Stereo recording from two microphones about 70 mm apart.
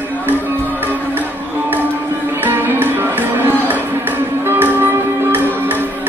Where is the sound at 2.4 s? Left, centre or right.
Right.